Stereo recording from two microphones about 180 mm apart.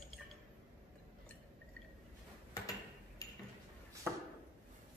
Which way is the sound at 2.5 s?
20° left (ahead or behind).